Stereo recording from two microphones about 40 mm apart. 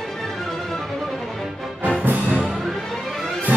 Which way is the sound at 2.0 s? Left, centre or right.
Right.